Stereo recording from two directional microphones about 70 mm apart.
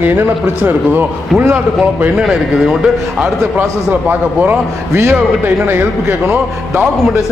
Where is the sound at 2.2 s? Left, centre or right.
Centre.